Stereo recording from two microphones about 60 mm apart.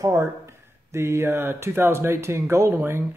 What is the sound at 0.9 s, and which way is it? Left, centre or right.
Speech, right.